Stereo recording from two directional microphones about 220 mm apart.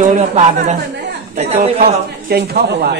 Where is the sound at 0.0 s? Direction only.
35° right (ahead or behind).